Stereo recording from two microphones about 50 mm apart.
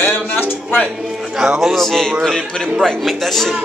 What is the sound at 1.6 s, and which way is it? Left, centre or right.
Speech, centre.